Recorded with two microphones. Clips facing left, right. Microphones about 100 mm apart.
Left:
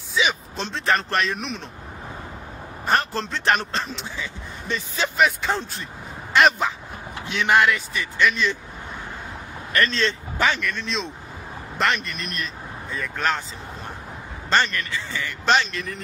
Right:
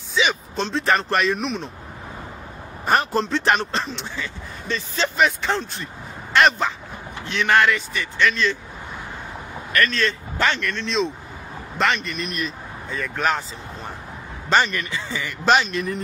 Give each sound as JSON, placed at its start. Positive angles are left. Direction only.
{"t": 0.1, "sound": "a man's voice", "side_deg": 0}
{"t": 2.9, "sound": "a man's voice", "side_deg": -10}
{"t": 3.3, "sound": "speech", "side_deg": 0}
{"t": 4.2, "sound": "speech", "side_deg": 15}
{"t": 5.1, "sound": "speech", "side_deg": 0}
{"t": 8.3, "sound": "speech", "side_deg": 15}
{"t": 9.7, "sound": "speech", "side_deg": 25}
{"t": 10.4, "sound": "speech", "side_deg": 0}
{"t": 14.5, "sound": "speech", "side_deg": -10}